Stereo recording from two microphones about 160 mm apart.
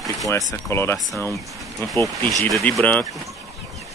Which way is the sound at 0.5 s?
15° left (ahead or behind).